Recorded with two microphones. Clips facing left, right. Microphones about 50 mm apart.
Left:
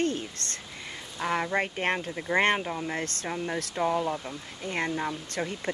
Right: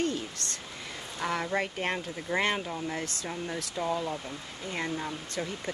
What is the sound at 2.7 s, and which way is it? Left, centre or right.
Speech, left.